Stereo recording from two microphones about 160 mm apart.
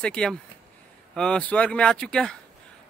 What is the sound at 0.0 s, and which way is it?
A man's voice, 5° left (ahead or behind).